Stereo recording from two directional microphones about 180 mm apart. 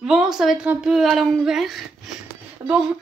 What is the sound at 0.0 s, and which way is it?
Speech, 5° right (ahead or behind).